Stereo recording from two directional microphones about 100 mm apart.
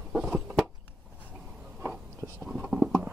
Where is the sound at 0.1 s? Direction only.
10° right (ahead or behind).